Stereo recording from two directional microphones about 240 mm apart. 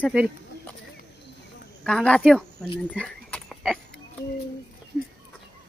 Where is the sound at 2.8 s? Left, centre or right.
Centre.